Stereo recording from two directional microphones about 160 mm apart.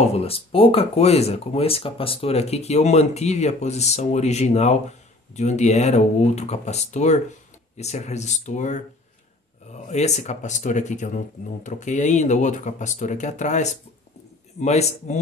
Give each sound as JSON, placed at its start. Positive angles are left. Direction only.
{"t": 0.0, "sound": "speech", "side_deg": 40}
{"t": 9.8, "sound": "speech", "side_deg": 45}